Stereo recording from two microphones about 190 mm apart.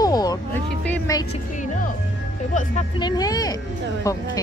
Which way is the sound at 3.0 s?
20° left (ahead or behind).